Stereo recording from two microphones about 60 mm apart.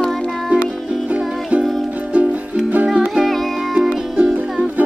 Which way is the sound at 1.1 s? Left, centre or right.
Right.